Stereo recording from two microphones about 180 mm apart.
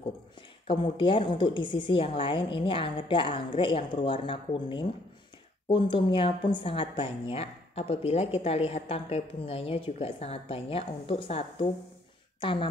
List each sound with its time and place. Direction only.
0.7 s a woman's voice: 30° left (ahead or behind)